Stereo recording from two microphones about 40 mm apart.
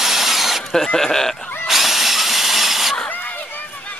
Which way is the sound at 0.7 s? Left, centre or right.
Centre.